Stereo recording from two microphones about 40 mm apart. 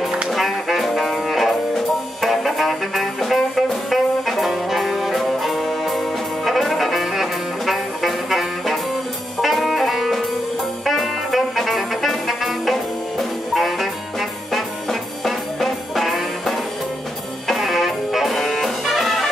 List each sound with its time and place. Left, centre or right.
0.3 s music: centre
12.3 s jazz: centre
14.5 s music: centre